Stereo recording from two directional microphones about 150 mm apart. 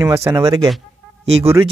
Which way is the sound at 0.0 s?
20° right (ahead or behind).